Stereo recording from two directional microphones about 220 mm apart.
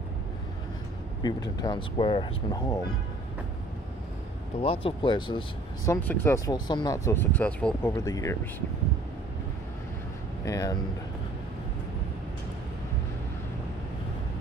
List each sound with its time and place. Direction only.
1.2 s speech: 20° left (ahead or behind)
4.6 s speech: 25° left (ahead or behind)
5.9 s speech: 10° left (ahead or behind)
10.4 s speech: 15° left (ahead or behind)